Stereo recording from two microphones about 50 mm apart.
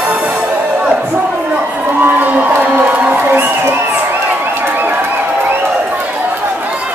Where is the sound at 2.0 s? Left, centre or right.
Right.